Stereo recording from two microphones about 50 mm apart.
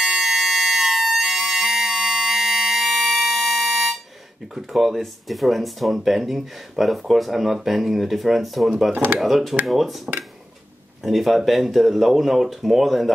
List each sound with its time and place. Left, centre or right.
0.0 s music: centre
4.6 s speech: centre
8.9 s speech: right
9.2 s speech: centre